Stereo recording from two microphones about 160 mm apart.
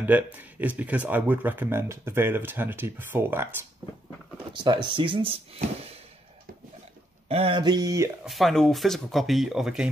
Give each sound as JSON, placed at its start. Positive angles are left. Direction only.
{"t": 0.0, "sound": "speech", "side_deg": -10}
{"t": 4.8, "sound": "speech", "side_deg": -30}
{"t": 7.2, "sound": "speech", "side_deg": -35}
{"t": 8.3, "sound": "speech", "side_deg": 0}